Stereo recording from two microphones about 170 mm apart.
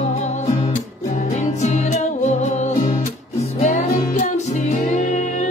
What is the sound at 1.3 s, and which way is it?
Music, 45° left (ahead or behind).